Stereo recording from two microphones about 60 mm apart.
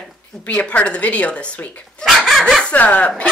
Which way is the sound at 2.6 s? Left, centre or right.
Left.